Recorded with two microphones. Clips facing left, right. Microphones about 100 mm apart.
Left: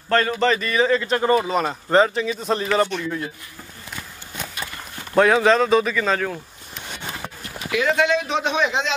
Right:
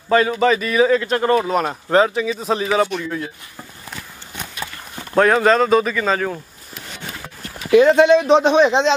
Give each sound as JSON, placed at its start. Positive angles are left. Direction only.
{"t": 0.1, "sound": "speech", "side_deg": -5}
{"t": 5.1, "sound": "speech", "side_deg": 0}
{"t": 7.7, "sound": "a man's voice", "side_deg": -30}